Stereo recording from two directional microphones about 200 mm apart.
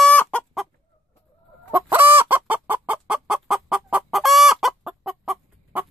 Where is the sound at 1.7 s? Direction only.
10° right (ahead or behind).